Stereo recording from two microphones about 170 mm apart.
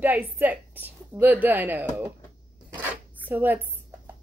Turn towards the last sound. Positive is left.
turn(degrees=-10)  # may be behind; listen again after turning